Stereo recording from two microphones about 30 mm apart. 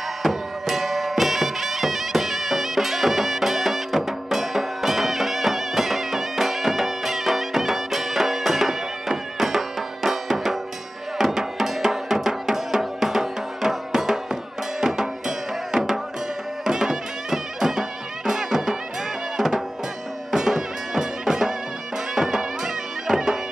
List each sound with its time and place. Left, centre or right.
0.2 s music: centre
19.3 s drum: centre
20.2 s music: centre